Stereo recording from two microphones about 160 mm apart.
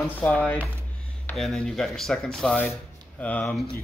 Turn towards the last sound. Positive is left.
turn(degrees=10)  # may be behind; listen again after turning